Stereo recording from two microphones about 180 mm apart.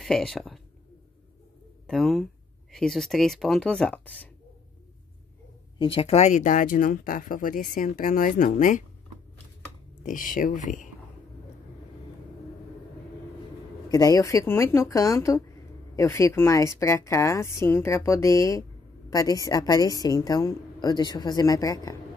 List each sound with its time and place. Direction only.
0.0 s speech: centre (ahead or behind)
1.9 s speech: centre (ahead or behind)
5.8 s speech: 30° left (ahead or behind); by 8.8 s 45° left (ahead or behind)
10.3 s speech: 45° left (ahead or behind)
13.8 s speech: 20° left (ahead or behind)